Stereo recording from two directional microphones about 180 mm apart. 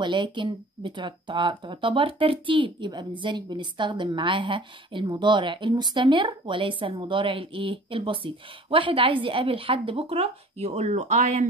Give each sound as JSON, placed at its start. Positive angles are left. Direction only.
{"t": 0.0, "sound": "speech", "side_deg": -25}